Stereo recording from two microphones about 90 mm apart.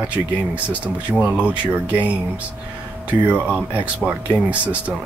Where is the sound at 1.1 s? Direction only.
15° right (ahead or behind).